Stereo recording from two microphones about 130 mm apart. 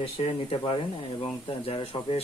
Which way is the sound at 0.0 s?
45° left (ahead or behind).